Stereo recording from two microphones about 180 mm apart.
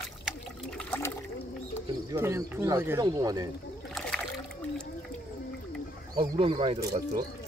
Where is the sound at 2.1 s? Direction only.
15° right (ahead or behind).